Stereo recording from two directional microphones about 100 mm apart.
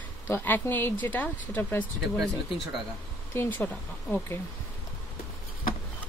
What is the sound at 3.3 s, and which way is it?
Speech, 20° left (ahead or behind).